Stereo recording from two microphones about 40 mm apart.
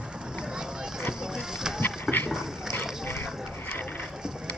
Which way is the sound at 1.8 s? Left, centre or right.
Left.